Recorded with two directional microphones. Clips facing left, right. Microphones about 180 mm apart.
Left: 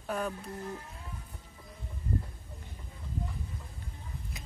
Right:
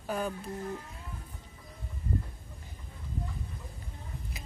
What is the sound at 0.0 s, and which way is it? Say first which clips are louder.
Music: right 1 dB; centre (ahead or behind).